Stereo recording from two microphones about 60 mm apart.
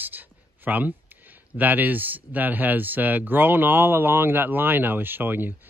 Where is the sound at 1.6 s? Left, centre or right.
Right.